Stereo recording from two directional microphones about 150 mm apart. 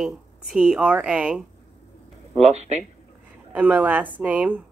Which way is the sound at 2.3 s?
45° right (ahead or behind).